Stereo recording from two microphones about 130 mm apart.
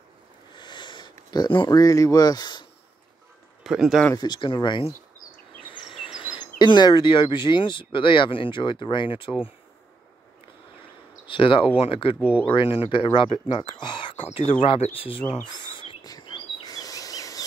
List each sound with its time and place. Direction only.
0.6 s a sound: 35° left (ahead or behind)
3.6 s speech: centre (ahead or behind)
4.1 s speech: 35° left (ahead or behind)
5.8 s a sound: 40° left (ahead or behind)
6.2 s speech: 35° left (ahead or behind)
11.2 s speech: 40° left (ahead or behind)
12.2 s speech: 10° right (ahead or behind)
12.5 s speech: 45° left (ahead or behind)
15.0 s bird vocalization: 45° left (ahead or behind)
16.7 s rub: 25° left (ahead or behind)